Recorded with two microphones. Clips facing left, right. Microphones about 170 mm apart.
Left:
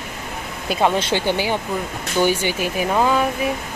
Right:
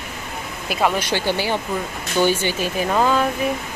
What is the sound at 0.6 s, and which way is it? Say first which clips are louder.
Speech: left 2 dB; 25° left (ahead or behind).